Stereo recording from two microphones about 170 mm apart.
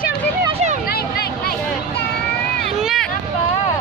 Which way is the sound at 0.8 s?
65° left (ahead or behind).